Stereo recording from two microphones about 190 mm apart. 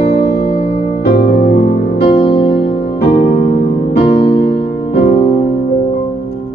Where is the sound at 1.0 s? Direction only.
55° left (ahead or behind).